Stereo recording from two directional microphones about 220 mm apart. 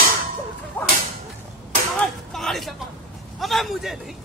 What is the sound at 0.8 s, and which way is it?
Speech, 5° left (ahead or behind).